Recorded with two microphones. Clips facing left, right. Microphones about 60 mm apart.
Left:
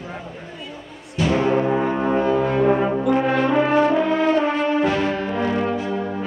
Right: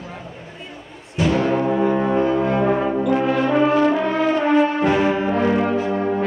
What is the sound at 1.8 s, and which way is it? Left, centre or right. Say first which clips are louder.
Music: right 2 dB; centre.